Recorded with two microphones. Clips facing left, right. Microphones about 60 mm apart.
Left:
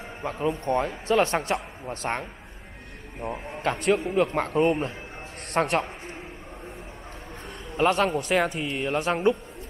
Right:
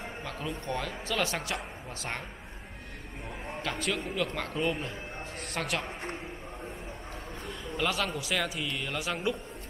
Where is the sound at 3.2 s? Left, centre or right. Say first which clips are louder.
Left 8 dB; left.